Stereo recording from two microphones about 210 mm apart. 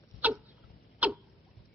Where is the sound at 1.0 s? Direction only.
5° right (ahead or behind).